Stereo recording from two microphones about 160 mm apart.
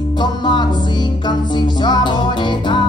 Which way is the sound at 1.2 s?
30° left (ahead or behind).